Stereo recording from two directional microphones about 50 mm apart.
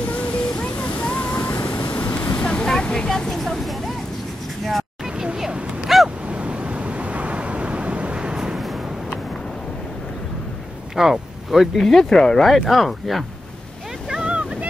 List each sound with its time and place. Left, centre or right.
0.7 s waves: left
1.7 s vehicle: left
2.3 s vehicle: centre
3.2 s speech: centre
5.2 s a sound: centre
5.9 s a sound: centre
6.2 s vehicle: right
11.0 s speech: centre
11.8 s speech: centre
14.0 s boat: centre